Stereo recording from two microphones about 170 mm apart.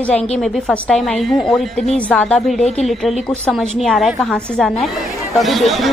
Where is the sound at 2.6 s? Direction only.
40° left (ahead or behind).